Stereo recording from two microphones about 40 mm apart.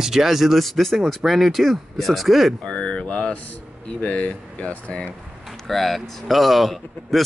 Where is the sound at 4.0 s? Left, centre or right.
Left.